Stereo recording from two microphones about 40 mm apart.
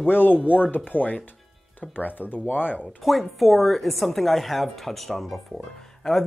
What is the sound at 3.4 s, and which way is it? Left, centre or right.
Speech, centre.